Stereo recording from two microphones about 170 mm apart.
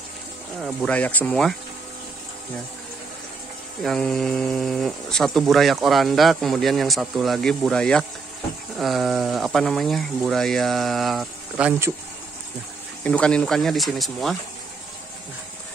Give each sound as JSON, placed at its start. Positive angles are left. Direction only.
{"t": 0.7, "sound": "speech", "side_deg": 10}
{"t": 3.8, "sound": "speech", "side_deg": 0}
{"t": 13.0, "sound": "speech", "side_deg": 5}